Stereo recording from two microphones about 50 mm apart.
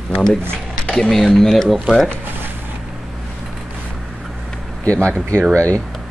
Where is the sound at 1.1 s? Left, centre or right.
Centre.